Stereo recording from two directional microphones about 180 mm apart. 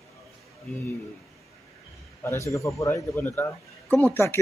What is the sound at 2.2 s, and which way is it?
A man's voice, 15° left (ahead or behind).